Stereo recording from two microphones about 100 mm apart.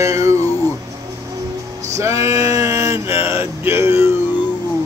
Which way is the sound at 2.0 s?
30° right (ahead or behind).